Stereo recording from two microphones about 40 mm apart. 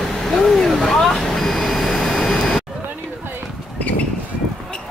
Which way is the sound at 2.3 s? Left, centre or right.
Centre.